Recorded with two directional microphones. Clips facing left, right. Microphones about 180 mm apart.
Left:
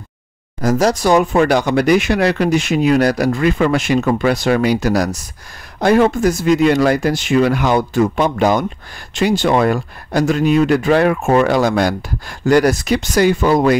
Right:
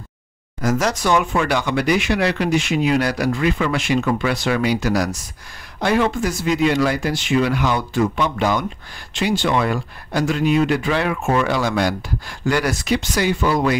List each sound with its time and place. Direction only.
0.6 s speech: 35° left (ahead or behind)